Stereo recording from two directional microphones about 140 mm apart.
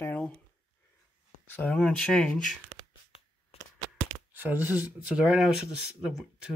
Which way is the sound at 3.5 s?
45° left (ahead or behind).